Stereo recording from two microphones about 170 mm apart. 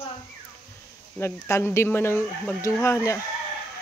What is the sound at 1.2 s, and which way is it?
Speech, 15° left (ahead or behind).